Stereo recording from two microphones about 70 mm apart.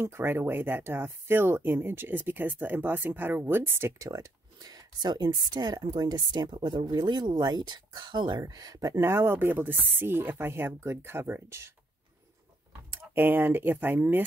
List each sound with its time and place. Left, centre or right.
0.0 s speech: right
4.0 s speech: right
9.0 s speech: right
12.9 s speech: right